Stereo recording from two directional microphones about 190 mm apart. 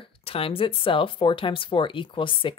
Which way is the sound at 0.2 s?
30° left (ahead or behind).